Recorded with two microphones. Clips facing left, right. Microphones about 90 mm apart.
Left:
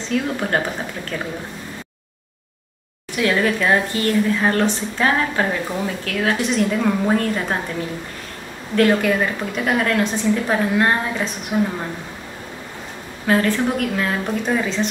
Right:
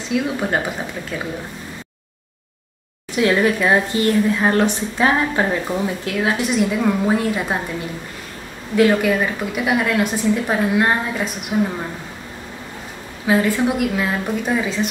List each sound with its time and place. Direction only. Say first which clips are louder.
0.1 s speech: right 1 dB; 5° right (ahead or behind)
3.2 s speech: right 2 dB; 20° right (ahead or behind)
6.5 s speech: right 1 dB; 5° right (ahead or behind)
8.7 s speech: right 1 dB; 5° right (ahead or behind)
13.3 s speech: right 1 dB; 10° right (ahead or behind)